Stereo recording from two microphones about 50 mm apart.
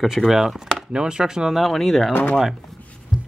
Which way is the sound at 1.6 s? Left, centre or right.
Centre.